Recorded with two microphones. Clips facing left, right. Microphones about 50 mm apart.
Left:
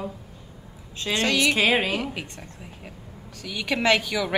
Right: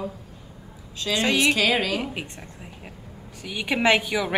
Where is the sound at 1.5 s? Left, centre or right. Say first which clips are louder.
Left 1 dB; left.